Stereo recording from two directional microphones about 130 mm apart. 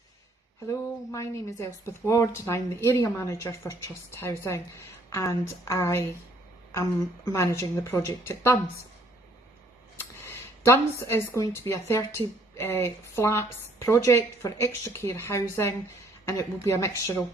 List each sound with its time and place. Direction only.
0.7 s a woman's voice: 25° left (ahead or behind)
7.3 s a woman's voice: 25° left (ahead or behind)
9.9 s a woman's voice: 20° left (ahead or behind)